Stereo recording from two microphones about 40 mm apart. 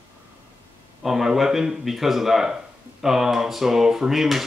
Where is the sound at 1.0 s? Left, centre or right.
Centre.